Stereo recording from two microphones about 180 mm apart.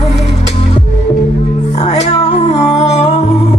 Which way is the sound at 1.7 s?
35° left (ahead or behind).